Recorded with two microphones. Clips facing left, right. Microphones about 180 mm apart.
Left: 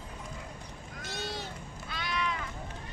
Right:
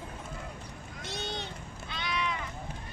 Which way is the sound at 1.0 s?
Centre (ahead or behind).